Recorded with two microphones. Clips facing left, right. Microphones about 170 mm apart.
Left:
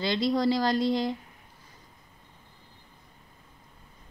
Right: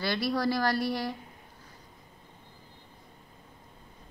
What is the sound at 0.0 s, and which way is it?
A woman's voice, 20° left (ahead or behind).